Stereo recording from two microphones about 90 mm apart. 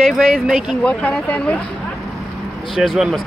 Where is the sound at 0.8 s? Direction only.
15° left (ahead or behind).